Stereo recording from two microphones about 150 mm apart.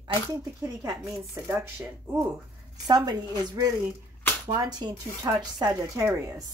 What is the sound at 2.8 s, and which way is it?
Speech, 25° right (ahead or behind).